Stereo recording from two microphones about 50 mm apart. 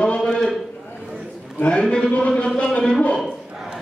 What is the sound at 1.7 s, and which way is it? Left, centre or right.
A man's voice, centre.